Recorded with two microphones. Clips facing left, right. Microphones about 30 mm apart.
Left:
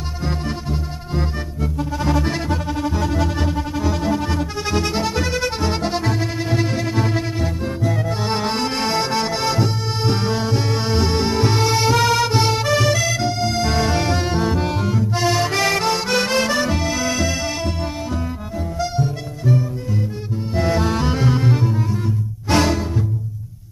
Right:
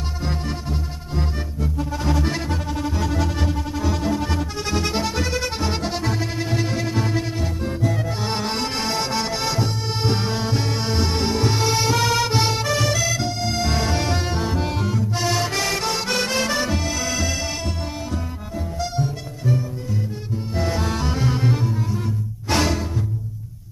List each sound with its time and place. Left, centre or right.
0.2 s music: centre
21.6 s double bass: centre
22.5 s music: centre